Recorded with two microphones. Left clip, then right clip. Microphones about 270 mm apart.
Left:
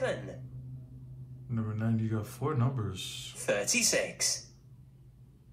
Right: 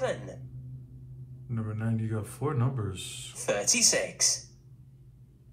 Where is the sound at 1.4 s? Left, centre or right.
Centre.